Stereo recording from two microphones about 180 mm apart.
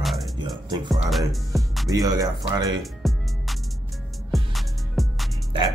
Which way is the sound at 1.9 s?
20° right (ahead or behind).